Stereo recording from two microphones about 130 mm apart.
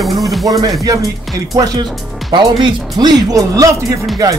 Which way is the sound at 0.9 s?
25° right (ahead or behind).